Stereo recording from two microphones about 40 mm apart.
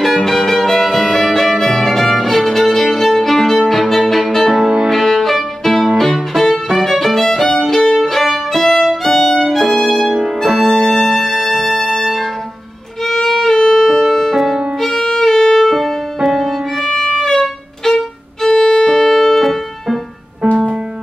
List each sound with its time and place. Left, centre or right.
0.0 s violin: centre
4.1 s music: centre
9.0 s violin: centre
11.4 s music: centre
13.0 s violin: centre
14.0 s music: centre
14.8 s violin: centre
15.0 s music: centre
16.8 s violin: centre
20.5 s music: right